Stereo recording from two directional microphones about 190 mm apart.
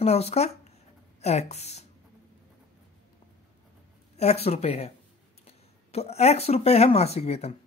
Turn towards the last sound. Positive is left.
turn(degrees=35)  # may be behind; listen again after turning